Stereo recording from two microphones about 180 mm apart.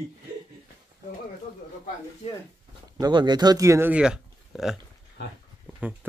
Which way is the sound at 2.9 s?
25° right (ahead or behind).